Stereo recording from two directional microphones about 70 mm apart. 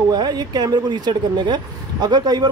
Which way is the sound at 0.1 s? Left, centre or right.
Right.